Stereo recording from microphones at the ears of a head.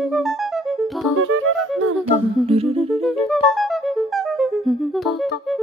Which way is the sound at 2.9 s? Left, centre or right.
Centre.